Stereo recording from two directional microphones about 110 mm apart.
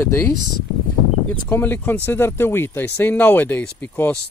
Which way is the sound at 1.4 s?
20° left (ahead or behind).